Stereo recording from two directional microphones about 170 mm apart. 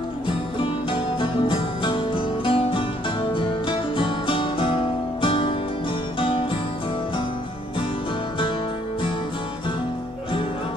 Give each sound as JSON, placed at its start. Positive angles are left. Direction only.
{"t": 1.2, "sound": "music", "side_deg": 30}